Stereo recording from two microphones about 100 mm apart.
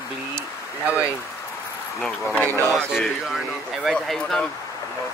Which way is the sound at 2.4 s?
30° right (ahead or behind).